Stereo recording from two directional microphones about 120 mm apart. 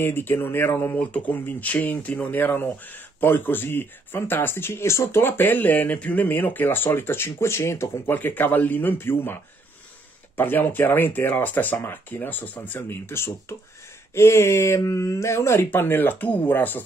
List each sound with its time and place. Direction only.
0.0 s speech: 20° left (ahead or behind)